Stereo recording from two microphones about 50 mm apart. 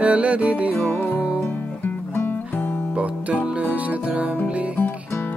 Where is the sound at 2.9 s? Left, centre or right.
Right.